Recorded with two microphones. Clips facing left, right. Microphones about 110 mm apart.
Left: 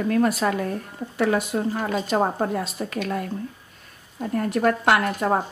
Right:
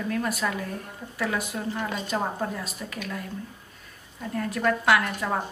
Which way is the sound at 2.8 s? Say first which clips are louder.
Left 7 dB; 60° left (ahead or behind).